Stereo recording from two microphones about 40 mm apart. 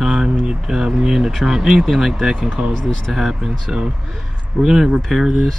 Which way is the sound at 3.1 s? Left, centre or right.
Centre.